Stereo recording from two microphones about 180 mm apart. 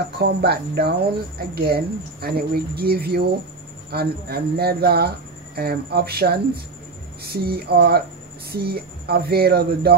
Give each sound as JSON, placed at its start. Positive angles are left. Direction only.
{"t": 0.2, "sound": "speech", "side_deg": -65}